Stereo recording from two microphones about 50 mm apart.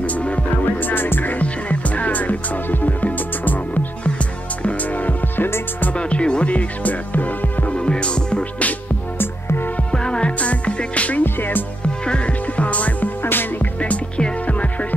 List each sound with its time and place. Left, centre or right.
0.0 s music: left
0.8 s music: left
1.4 s music: left
5.4 s music: left
5.9 s music: left
7.7 s music: left
10.0 s music: centre
11.2 s music: left
12.1 s music: left
13.2 s music: left
13.7 s music: left